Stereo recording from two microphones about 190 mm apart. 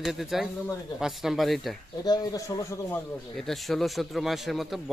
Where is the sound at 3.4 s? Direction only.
Centre (ahead or behind).